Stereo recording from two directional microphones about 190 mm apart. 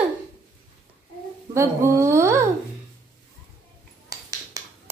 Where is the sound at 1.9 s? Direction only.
15° right (ahead or behind).